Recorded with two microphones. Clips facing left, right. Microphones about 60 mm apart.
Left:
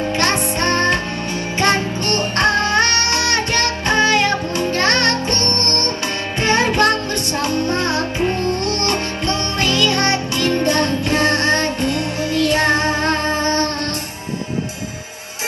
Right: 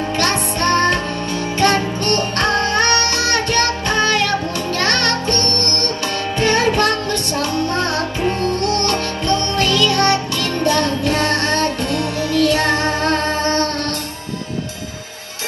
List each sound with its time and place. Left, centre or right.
0.2 s music: left